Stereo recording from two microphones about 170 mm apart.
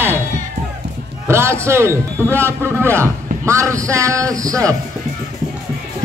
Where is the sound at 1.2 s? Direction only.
15° right (ahead or behind).